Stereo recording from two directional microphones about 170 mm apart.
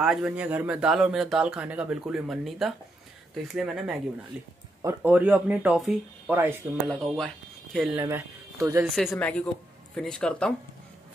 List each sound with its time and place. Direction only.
0.0 s speech: 5° right (ahead or behind)
8.0 s speech: 15° right (ahead or behind)
8.9 s speech: 5° left (ahead or behind)